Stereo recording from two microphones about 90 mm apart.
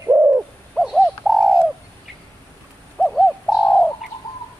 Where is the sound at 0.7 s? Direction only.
Centre (ahead or behind).